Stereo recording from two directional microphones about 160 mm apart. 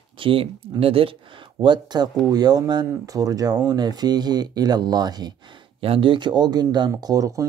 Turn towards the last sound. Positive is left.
turn(degrees=-20)  # may be behind; listen again after turning